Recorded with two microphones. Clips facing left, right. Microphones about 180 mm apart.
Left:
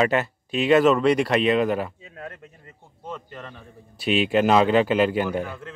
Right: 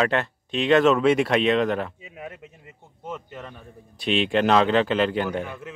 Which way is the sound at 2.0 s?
10° right (ahead or behind).